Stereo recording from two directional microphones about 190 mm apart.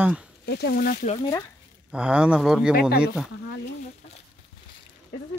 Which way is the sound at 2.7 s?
55° left (ahead or behind).